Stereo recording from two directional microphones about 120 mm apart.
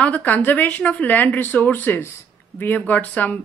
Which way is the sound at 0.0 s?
10° left (ahead or behind).